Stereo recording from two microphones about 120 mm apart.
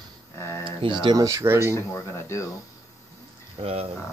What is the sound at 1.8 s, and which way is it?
Speech, 20° left (ahead or behind).